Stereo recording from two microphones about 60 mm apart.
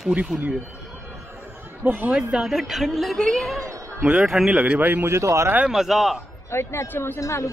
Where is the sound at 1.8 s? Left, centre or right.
Right.